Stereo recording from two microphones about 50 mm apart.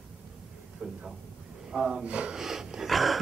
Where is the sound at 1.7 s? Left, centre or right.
Centre.